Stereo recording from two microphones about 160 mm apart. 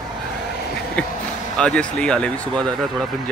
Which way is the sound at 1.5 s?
5° left (ahead or behind).